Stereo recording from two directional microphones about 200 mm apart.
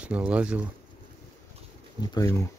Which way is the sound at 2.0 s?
15° left (ahead or behind).